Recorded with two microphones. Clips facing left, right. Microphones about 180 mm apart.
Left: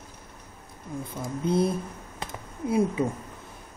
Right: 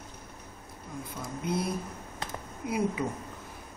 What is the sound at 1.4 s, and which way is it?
Speech, 30° left (ahead or behind).